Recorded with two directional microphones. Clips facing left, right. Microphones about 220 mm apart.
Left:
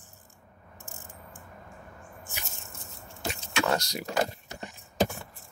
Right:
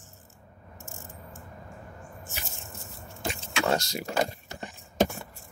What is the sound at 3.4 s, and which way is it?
Speech, 25° right (ahead or behind).